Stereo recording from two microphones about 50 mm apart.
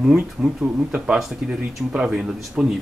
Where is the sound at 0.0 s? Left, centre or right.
Right.